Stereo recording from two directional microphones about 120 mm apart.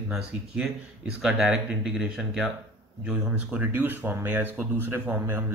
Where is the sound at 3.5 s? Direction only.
15° right (ahead or behind).